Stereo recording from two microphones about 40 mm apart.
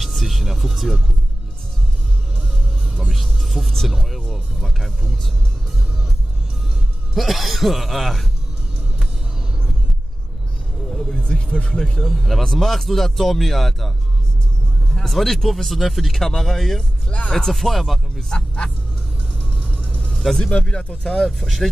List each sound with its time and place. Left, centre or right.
0.0 s speech: centre
3.0 s music: centre
4.3 s speech: centre
7.2 s speech: centre
10.9 s vehicle: centre
11.1 s speech: left
11.8 s speech: centre
15.0 s speech: centre
19.5 s music: left
19.8 s vehicle: left
20.1 s music: centre
20.4 s speech: left
21.3 s speech: centre